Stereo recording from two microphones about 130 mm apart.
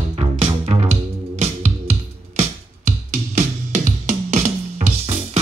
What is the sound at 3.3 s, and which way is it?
Music, 65° right (ahead or behind).